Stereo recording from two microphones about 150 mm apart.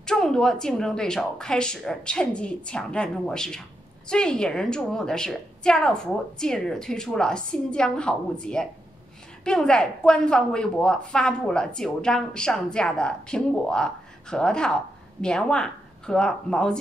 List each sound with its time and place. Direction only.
0.0 s speech: 5° left (ahead or behind)